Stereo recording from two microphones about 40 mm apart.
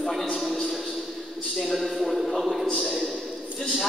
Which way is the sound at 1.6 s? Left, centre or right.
Centre.